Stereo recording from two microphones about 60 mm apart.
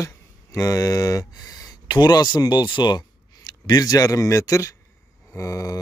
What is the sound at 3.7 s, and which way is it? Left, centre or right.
A man's voice, left.